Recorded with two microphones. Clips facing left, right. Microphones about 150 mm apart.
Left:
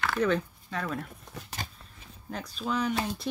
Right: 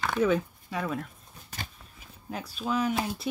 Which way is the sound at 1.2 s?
80° left.